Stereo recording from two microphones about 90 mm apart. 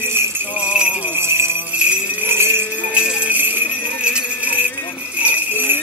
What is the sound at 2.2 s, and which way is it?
Jingle bell, 25° right (ahead or behind).